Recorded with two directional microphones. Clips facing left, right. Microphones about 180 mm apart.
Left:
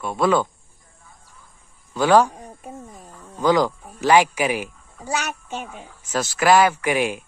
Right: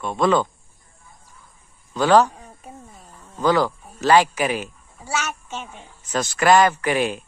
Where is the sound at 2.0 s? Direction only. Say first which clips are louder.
Even; 10° left (ahead or behind).